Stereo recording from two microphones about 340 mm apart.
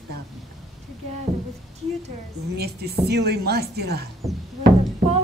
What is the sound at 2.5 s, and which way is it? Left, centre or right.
A woman's voice, right.